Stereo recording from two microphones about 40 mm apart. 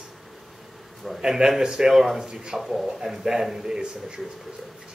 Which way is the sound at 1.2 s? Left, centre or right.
Centre.